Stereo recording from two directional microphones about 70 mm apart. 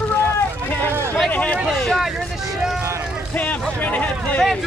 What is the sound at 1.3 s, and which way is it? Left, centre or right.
Speech, left.